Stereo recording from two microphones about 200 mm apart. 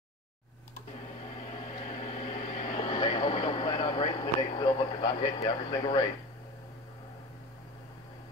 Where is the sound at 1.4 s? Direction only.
30° left (ahead or behind).